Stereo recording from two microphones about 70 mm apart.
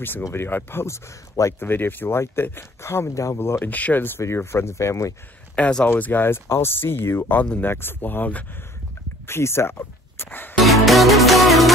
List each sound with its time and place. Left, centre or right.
0.2 s speech: left
1.6 s speech: left
4.2 s speech: left
5.6 s speech: centre
5.9 s speech: left
9.3 s speech: left
10.6 s music: centre